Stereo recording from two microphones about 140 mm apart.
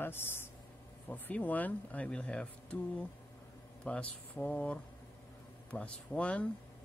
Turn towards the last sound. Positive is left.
turn(degrees=10)  # may be behind; listen again after turning